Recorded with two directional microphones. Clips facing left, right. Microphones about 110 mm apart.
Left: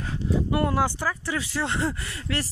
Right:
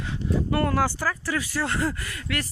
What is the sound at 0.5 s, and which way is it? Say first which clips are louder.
Speech: right 1 dB; 15° left (ahead or behind).